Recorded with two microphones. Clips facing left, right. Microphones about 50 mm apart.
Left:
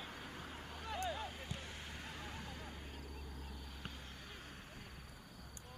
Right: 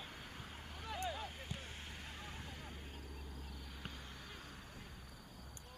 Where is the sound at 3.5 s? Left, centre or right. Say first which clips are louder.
Even; centre.